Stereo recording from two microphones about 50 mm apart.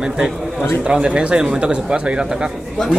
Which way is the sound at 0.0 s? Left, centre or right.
Centre.